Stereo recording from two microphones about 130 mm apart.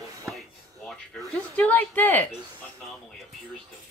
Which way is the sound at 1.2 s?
10° left (ahead or behind).